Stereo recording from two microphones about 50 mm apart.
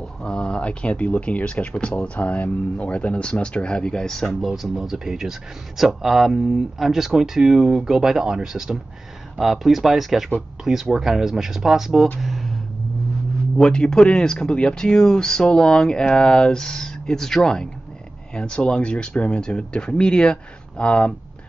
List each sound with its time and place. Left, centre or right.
0.2 s speech: centre
9.4 s speech: centre
12.2 s a sound: centre
13.6 s speech: centre